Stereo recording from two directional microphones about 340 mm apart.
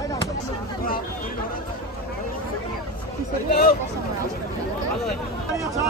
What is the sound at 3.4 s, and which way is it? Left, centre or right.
Speech, left.